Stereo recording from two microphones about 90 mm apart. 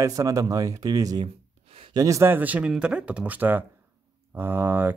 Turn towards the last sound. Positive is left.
turn(degrees=-25)  # may be behind; listen again after turning